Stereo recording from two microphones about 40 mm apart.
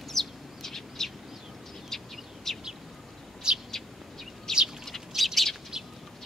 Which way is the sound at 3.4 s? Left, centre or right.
Right.